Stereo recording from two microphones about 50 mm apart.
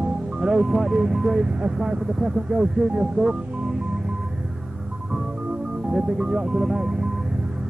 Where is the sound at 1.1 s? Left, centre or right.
Centre.